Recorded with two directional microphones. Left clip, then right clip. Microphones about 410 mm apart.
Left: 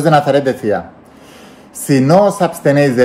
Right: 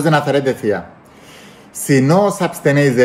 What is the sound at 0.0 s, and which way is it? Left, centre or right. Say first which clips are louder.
A man's voice: left 4 dB; centre.